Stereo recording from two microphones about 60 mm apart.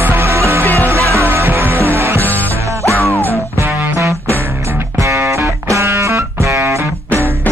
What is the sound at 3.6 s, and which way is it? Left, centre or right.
Music, right.